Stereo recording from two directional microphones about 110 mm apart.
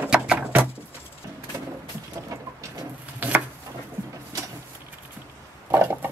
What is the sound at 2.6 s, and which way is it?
Bird, 30° right (ahead or behind).